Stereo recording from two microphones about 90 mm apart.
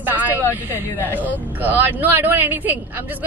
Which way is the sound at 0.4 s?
25° left (ahead or behind).